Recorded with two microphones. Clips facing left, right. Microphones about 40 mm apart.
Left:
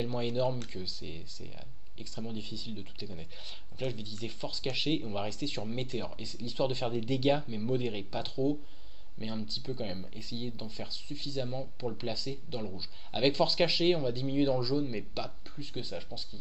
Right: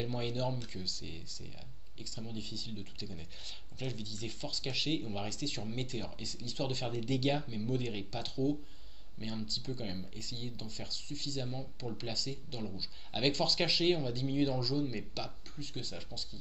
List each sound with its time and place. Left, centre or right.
0.0 s speech: centre